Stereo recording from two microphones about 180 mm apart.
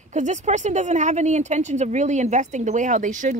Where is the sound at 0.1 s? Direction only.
40° right (ahead or behind).